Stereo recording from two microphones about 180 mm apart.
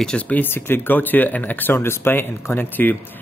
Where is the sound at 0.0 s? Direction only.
5° left (ahead or behind).